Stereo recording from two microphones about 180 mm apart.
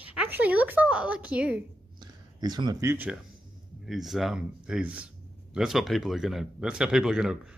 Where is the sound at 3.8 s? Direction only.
Centre (ahead or behind).